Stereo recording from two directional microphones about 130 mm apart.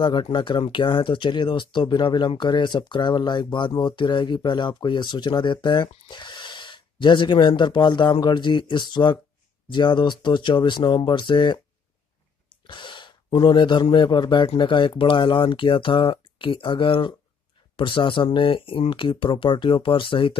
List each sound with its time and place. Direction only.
0.0 s speech: 40° left (ahead or behind)
12.6 s speech: 40° left (ahead or behind)